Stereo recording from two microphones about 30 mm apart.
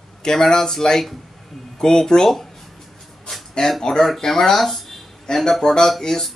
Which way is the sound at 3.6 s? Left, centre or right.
Left.